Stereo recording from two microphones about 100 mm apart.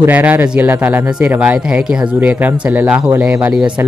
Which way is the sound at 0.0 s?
15° right (ahead or behind).